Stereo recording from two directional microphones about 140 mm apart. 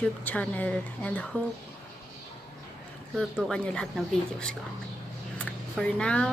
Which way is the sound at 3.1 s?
5° left (ahead or behind).